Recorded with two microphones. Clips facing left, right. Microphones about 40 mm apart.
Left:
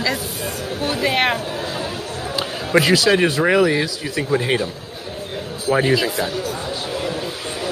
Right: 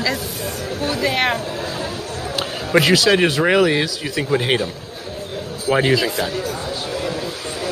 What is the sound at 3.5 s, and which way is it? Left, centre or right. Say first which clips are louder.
Speech: even; right.